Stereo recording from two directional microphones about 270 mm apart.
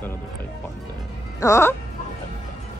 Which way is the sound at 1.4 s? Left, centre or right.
Centre.